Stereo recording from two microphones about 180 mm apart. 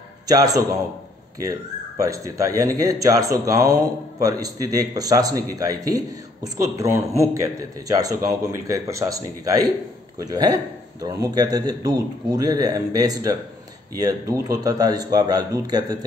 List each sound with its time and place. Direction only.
0.3 s speech: 20° right (ahead or behind)
2.0 s speech: 20° right (ahead or behind)